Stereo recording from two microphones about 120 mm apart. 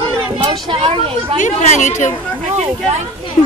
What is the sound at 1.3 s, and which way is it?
Speech, 90° left.